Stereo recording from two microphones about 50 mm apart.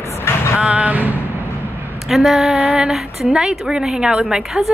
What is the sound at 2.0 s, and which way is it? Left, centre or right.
Speech, centre.